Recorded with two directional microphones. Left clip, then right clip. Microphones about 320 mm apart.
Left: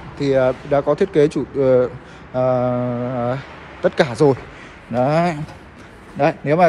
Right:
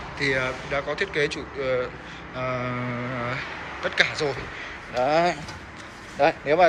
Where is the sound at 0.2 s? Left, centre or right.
Centre.